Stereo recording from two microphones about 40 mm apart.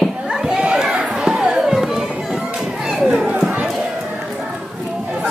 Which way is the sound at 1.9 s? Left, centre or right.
Centre.